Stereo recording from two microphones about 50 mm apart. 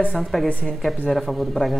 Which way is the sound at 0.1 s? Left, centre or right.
Centre.